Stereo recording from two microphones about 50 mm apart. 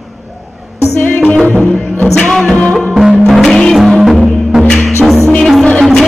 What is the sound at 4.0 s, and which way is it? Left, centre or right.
Music, centre.